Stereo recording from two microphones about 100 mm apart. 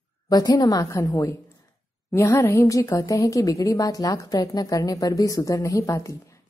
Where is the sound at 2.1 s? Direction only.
25° left (ahead or behind).